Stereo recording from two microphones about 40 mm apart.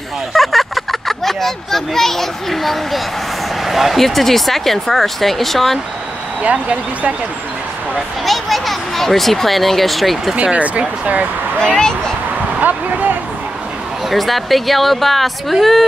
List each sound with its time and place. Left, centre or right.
0.3 s speech: centre
6.7 s speech: right
7.9 s speech: centre
10.3 s speech: right
11.6 s speech: left
12.5 s speech: right
14.1 s speech: centre